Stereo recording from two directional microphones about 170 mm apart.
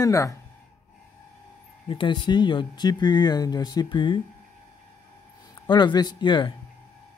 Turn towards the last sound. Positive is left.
turn(degrees=25)  # may be behind; listen again after turning